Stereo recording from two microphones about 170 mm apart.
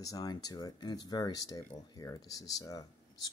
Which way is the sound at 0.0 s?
20° left (ahead or behind).